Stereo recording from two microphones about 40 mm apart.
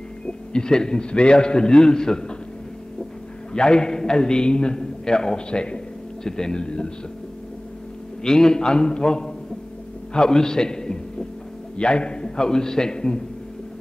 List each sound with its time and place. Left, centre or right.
0.5 s a man's voice: centre
3.5 s a man's voice: left
8.2 s a man's voice: centre
10.1 s hum: centre
11.7 s a man's voice: left